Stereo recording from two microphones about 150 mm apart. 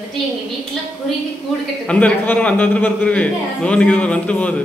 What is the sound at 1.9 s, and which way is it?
A man's voice, 10° left (ahead or behind).